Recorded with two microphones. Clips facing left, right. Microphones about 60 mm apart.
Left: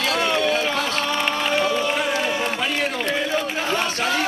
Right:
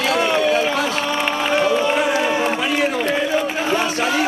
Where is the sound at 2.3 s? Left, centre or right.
Right.